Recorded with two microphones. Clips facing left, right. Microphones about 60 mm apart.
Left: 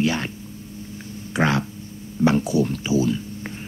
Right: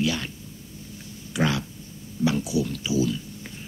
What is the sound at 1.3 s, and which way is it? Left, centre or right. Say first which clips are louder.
A man's voice: left 4 dB; left.